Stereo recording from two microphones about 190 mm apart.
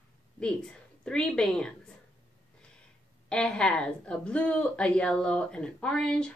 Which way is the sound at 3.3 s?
5° left (ahead or behind).